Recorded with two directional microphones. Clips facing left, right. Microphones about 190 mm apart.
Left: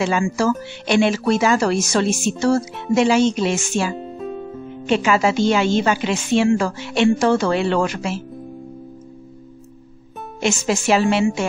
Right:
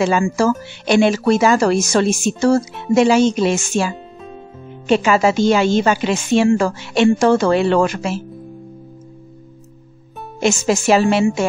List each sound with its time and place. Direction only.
0.0 s speech: 40° right (ahead or behind)
10.4 s a woman's voice: 40° right (ahead or behind)